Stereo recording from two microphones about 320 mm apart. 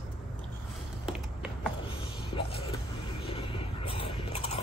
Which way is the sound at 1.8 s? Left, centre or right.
Centre.